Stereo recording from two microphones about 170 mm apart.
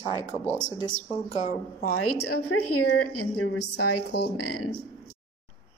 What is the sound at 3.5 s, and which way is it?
Speech, 75° left (ahead or behind).